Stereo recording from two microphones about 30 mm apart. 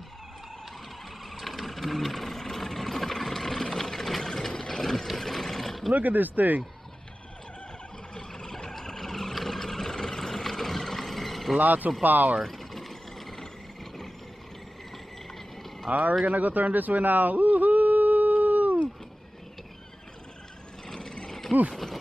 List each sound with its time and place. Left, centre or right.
1.3 s vehicle: centre
3.7 s a sound: centre
4.5 s vehicle: centre
5.2 s a sound: centre
5.9 s speech: right
8.1 s a sound: left
8.6 s vehicle: centre
11.5 s speech: right
12.0 s speech: right
12.4 s vehicle: centre
15.9 s speech: right
16.3 s a sound: right
21.0 s mechanisms: left
21.3 s mechanisms: centre